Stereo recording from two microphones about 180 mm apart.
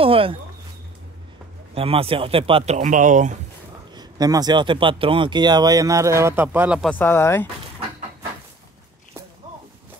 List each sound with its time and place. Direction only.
0.0 s speech: 30° right (ahead or behind)
1.8 s speech: 30° right (ahead or behind)
3.9 s speech: 20° right (ahead or behind)
6.9 s speech: 10° left (ahead or behind)